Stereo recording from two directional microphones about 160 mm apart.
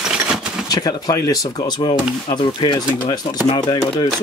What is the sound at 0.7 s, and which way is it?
Speech, 25° left (ahead or behind).